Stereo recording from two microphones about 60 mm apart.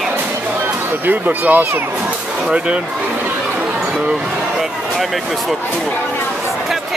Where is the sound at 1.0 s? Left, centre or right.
Right.